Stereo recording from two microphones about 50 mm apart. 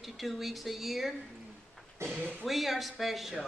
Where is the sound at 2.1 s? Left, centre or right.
Right.